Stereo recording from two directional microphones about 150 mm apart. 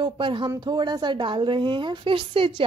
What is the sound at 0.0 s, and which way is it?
A woman's voice, 35° right (ahead or behind).